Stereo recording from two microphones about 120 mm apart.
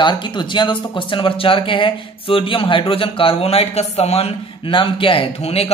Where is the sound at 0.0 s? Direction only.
40° left (ahead or behind).